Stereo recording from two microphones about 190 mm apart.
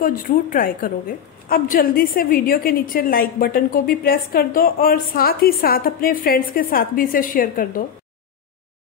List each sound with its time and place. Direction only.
0.0 s a woman's voice: 45° left (ahead or behind)